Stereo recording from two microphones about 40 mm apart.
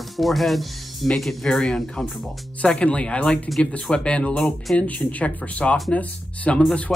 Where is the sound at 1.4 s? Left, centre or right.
Centre.